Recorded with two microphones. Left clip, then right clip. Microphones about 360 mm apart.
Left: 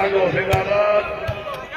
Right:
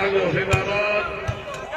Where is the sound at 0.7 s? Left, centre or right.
Centre.